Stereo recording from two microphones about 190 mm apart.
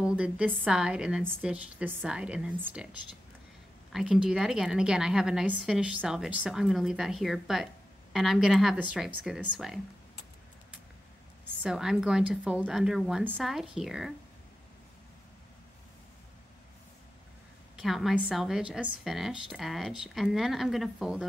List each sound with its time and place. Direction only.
0.0 s a woman's voice: 5° right (ahead or behind)
3.9 s a woman's voice: 5° right (ahead or behind)
11.6 s a woman's voice: 5° right (ahead or behind)
17.7 s a woman's voice: centre (ahead or behind)